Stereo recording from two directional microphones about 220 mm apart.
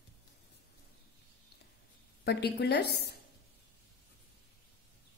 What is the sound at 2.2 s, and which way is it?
Speech, 50° left (ahead or behind).